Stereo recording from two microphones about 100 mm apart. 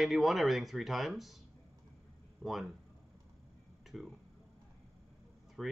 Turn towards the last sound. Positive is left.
turn(degrees=0)  # may be behind; listen again after turning